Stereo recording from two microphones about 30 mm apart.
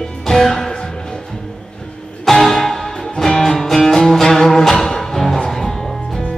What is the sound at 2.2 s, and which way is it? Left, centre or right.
Music, centre.